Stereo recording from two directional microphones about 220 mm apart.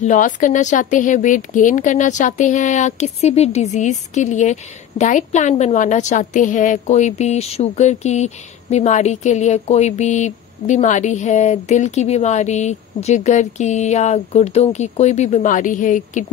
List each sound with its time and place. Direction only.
0.0 s a woman's voice: 35° left (ahead or behind)